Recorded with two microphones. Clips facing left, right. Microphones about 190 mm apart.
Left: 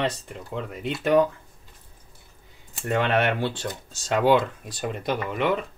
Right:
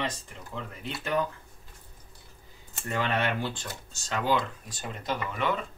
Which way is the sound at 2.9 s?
70° left (ahead or behind).